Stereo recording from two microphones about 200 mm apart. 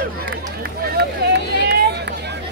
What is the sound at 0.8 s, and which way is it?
Run, 55° right (ahead or behind).